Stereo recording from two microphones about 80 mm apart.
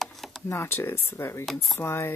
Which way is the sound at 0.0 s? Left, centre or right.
Centre.